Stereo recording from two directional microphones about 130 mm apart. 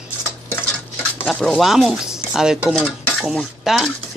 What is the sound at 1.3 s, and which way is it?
Speech, centre (ahead or behind).